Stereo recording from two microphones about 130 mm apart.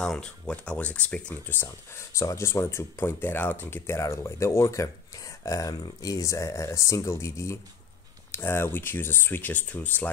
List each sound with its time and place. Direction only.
0.0 s speech: 5° left (ahead or behind)